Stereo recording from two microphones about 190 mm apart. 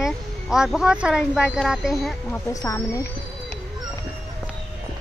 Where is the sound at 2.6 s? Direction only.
20° left (ahead or behind).